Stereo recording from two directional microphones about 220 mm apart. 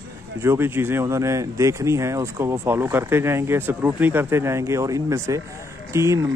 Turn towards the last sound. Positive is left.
turn(degrees=-15)  # may be behind; listen again after turning